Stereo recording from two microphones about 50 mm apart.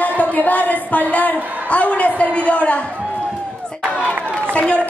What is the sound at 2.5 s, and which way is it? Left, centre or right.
Speech, left.